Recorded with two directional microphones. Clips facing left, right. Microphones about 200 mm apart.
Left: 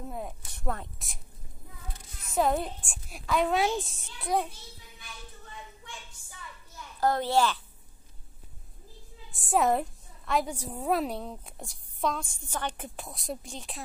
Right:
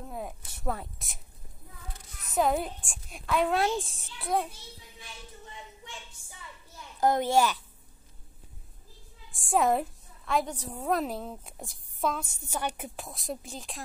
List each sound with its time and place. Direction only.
0.0 s a woman's voice: centre (ahead or behind)
2.3 s a woman's voice: centre (ahead or behind)
4.9 s a sound: 25° right (ahead or behind)
7.0 s a child's voice: 20° right (ahead or behind)
9.3 s a woman's voice: centre (ahead or behind)